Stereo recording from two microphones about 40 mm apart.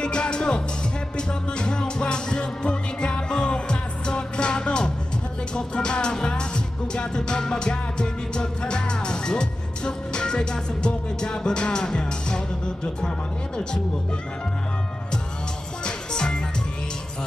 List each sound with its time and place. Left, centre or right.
0.0 s music: left
15.8 s music: centre